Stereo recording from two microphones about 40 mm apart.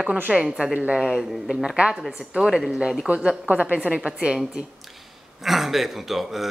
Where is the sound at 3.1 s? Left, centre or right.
Right.